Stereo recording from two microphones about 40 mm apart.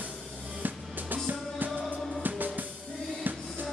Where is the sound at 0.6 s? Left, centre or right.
Right.